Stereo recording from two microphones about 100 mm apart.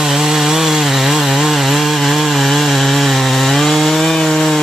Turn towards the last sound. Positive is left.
turn(degrees=0)  # may be behind; listen again after turning